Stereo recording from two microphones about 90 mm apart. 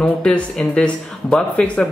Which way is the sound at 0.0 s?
10° left (ahead or behind).